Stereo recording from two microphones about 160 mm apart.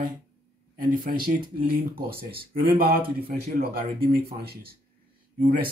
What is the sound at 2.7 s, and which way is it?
Speech, 70° right (ahead or behind).